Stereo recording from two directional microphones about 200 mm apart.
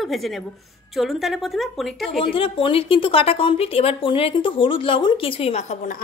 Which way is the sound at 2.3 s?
25° left (ahead or behind).